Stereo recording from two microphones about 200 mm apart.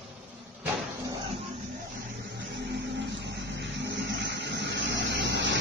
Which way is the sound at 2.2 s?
60° right (ahead or behind).